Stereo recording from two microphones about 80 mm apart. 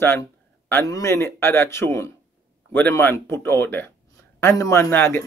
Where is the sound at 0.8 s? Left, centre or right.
Left.